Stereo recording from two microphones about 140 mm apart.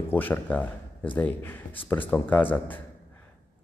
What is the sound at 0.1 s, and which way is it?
Speech, 15° left (ahead or behind).